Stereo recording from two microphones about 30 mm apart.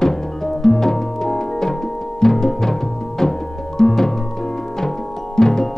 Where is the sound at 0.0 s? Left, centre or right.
Centre.